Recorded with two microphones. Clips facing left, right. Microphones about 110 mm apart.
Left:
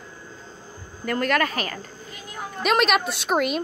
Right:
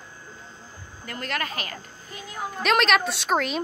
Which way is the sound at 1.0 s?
50° left (ahead or behind).